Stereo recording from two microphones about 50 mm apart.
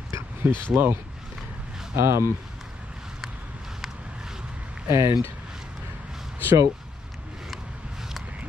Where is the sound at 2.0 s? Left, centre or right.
Right.